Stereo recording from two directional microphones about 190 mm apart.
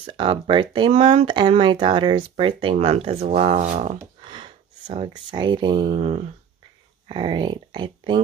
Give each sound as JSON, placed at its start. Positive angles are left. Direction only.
{"t": 0.0, "sound": "speech", "side_deg": -25}
{"t": 4.3, "sound": "speech", "side_deg": -25}
{"t": 5.9, "sound": "speech", "side_deg": -35}